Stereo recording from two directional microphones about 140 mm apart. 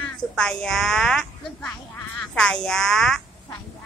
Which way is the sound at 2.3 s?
5° left (ahead or behind).